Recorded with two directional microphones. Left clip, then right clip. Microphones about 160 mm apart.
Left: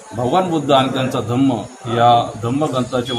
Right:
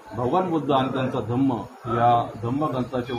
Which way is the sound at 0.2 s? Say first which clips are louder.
Left 6 dB; 15° left (ahead or behind).